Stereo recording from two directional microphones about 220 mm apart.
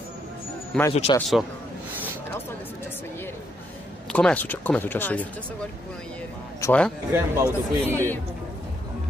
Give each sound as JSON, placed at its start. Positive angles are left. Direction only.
{"t": 0.9, "sound": "speech", "side_deg": 25}
{"t": 4.1, "sound": "speech", "side_deg": 5}
{"t": 6.6, "sound": "speech", "side_deg": 5}
{"t": 7.1, "sound": "a man's voice", "side_deg": -10}